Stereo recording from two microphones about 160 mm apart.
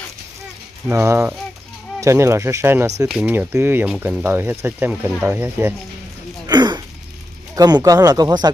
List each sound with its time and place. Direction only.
0.8 s speech: 15° right (ahead or behind)
6.4 s a sound: 25° right (ahead or behind)
7.5 s speech: 25° right (ahead or behind)